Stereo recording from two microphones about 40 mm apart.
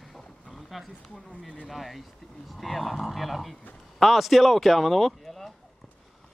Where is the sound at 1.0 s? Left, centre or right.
Left.